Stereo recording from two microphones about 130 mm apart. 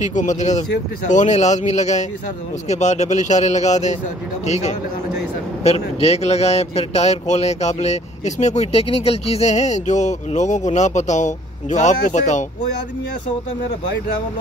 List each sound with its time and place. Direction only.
0.0 s a man's voice: 70° left (ahead or behind)